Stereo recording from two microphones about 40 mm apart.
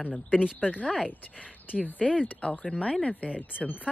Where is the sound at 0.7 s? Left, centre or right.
Left.